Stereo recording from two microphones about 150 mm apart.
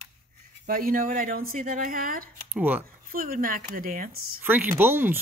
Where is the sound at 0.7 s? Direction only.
70° right (ahead or behind).